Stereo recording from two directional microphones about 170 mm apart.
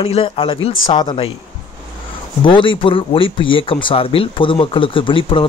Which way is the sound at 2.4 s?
30° left (ahead or behind).